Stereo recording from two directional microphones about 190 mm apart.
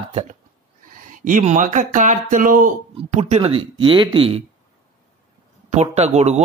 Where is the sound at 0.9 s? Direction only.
45° right (ahead or behind); by 4.4 s 30° right (ahead or behind).